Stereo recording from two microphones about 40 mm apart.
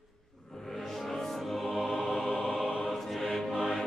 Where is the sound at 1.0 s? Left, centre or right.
Centre.